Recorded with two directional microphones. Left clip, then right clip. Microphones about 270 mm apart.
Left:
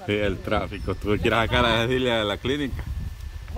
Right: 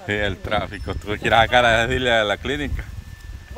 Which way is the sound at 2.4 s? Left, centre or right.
Right.